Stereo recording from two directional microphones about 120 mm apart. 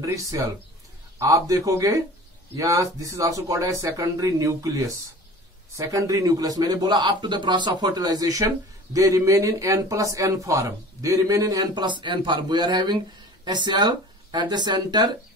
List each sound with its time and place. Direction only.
0.0 s a man's voice: 30° right (ahead or behind)